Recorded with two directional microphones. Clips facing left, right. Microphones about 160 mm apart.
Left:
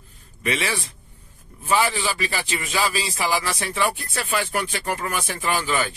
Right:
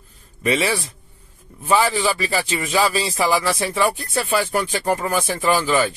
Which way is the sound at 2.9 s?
35° right (ahead or behind).